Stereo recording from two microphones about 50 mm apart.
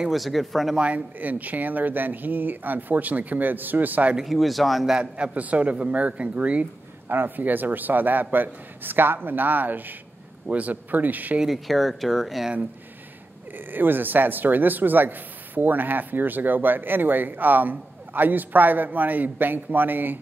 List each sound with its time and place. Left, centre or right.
0.1 s speech: centre
0.7 s speech: right
4.2 s speech: centre
4.9 s a man's voice: right
7.1 s speech: right
11.4 s speech: centre
13.7 s speech: right